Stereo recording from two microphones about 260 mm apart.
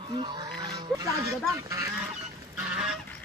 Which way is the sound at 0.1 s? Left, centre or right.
Centre.